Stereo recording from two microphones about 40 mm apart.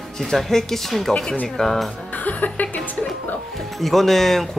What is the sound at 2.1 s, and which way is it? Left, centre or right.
Music, left.